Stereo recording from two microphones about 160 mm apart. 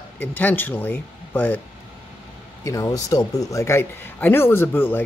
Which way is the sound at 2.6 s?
20° left (ahead or behind).